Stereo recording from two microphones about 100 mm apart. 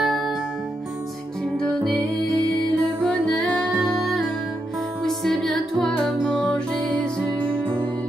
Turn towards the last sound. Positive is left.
turn(degrees=10)  # may be behind; listen again after turning